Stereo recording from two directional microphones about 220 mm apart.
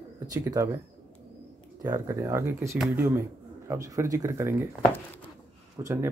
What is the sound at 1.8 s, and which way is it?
Speech, 15° right (ahead or behind).